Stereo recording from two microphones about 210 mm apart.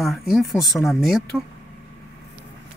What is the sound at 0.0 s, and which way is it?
Speech, centre (ahead or behind).